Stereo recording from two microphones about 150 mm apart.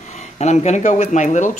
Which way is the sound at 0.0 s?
50° left (ahead or behind).